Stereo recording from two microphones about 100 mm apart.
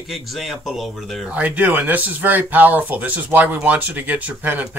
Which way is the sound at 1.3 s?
15° right (ahead or behind).